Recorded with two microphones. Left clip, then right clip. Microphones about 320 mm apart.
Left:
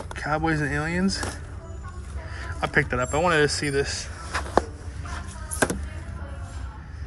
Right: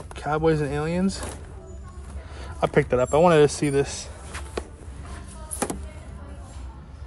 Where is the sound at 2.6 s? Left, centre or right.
Centre.